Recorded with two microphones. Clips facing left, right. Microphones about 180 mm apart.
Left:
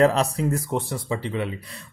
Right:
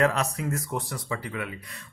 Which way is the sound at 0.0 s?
30° left (ahead or behind).